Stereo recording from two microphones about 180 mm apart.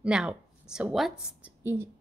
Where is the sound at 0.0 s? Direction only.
5° right (ahead or behind).